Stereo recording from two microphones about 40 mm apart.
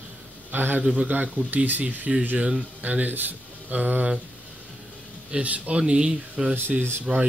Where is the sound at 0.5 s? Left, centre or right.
Right.